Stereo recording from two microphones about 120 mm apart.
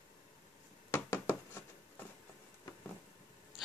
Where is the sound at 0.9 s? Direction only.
20° left (ahead or behind).